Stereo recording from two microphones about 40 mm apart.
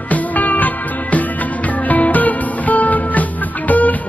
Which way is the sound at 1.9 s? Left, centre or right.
Left.